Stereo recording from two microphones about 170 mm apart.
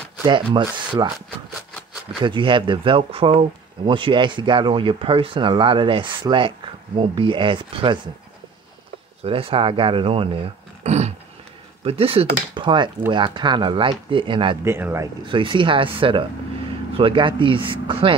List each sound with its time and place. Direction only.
0.2 s speech: 25° right (ahead or behind)
2.2 s speech: 30° right (ahead or behind)
9.2 s speech: 35° right (ahead or behind)
10.8 s a sound: 40° right (ahead or behind)
11.8 s speech: 35° right (ahead or behind)
14.6 s speech: 15° right (ahead or behind)
15.2 s speech: 30° right (ahead or behind)